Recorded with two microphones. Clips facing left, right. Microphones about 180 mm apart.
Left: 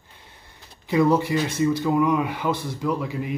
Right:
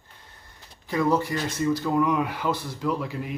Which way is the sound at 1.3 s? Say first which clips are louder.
Left 4 dB; 10° left (ahead or behind).